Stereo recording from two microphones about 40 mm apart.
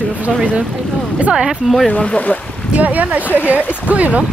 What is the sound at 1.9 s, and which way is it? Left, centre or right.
Speech, left.